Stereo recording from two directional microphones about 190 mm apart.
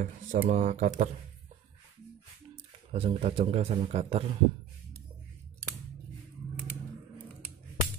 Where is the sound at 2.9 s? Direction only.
30° right (ahead or behind).